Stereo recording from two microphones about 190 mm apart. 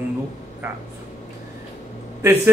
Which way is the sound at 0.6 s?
10° right (ahead or behind).